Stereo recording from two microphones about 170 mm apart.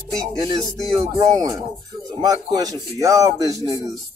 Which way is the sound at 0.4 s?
25° right (ahead or behind).